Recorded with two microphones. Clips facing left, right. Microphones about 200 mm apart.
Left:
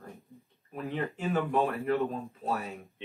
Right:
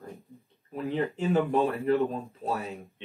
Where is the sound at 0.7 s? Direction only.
30° right (ahead or behind).